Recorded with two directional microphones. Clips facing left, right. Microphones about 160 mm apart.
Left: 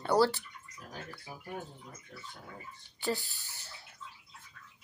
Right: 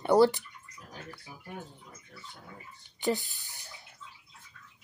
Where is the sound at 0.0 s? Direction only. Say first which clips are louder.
Right 5 dB; 15° right (ahead or behind).